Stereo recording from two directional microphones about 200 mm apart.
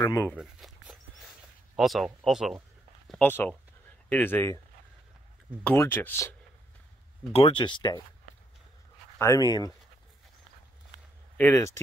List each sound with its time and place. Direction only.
0.0 s speech: 15° left (ahead or behind)
0.3 s walk: 5° right (ahead or behind)
1.8 s speech: centre (ahead or behind)
3.1 s speech: 10° left (ahead or behind)
5.6 s speech: 10° left (ahead or behind)
7.3 s speech: 25° left (ahead or behind)
9.2 s speech: 15° left (ahead or behind)
11.3 s speech: 10° left (ahead or behind)